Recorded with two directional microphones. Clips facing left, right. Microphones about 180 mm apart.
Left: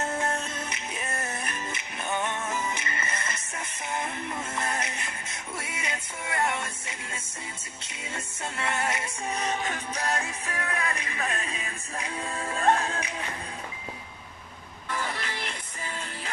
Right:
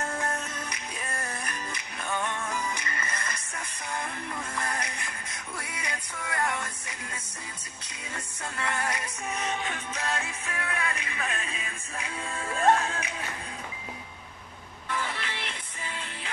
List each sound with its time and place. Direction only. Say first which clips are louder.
0.0 s music: left 3 dB; 25° left (ahead or behind)
8.5 s music: left 2 dB; 25° left (ahead or behind)
14.9 s music: left 1 dB; 40° left (ahead or behind)